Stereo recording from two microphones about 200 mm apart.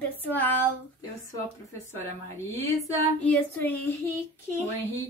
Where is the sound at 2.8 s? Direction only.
10° left (ahead or behind).